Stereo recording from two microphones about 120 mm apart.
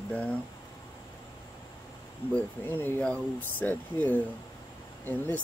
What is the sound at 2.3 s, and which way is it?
Speech, 15° left (ahead or behind).